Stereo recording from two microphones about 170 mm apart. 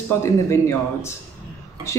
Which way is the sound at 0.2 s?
15° left (ahead or behind).